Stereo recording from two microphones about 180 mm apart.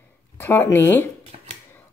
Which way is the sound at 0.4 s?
15° left (ahead or behind).